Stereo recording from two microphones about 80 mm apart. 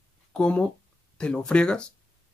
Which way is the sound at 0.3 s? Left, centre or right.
Centre.